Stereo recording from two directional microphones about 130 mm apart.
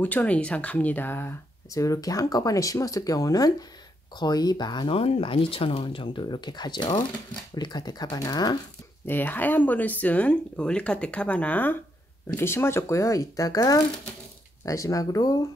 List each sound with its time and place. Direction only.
0.0 s speech: 10° left (ahead or behind); by 8.5 s 30° left (ahead or behind)
9.0 s speech: 15° left (ahead or behind)